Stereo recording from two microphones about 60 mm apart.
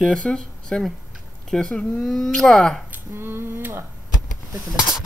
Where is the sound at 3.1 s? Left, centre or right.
Right.